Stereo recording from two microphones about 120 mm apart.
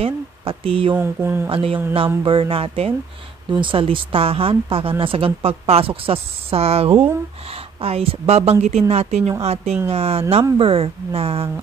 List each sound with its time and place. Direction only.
0.0 s speech: 50° right (ahead or behind)
0.9 s speech: 15° right (ahead or behind)
1.5 s speech: 50° right (ahead or behind)
3.4 s a woman's voice: 40° right (ahead or behind)